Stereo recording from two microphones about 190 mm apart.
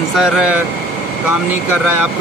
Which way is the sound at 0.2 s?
5° right (ahead or behind).